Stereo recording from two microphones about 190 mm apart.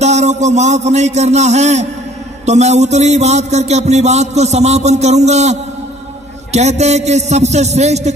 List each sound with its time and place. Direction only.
0.0 s a man's voice: 35° right (ahead or behind)